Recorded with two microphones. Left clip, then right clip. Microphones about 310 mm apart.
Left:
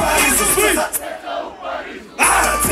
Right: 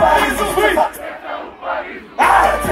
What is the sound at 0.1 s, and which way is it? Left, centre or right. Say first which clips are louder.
Music: right 2 dB; right.